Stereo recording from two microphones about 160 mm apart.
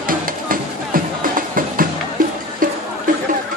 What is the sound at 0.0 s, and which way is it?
Music, 60° right (ahead or behind).